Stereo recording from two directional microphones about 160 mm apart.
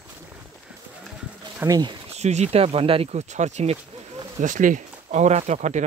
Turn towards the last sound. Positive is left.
turn(degrees=-50)  # may be behind; listen again after turning